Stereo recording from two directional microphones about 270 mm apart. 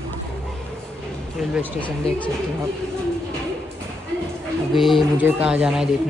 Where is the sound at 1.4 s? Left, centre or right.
Centre.